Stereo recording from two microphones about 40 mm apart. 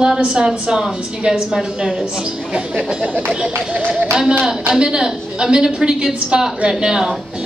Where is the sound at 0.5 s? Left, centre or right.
Centre.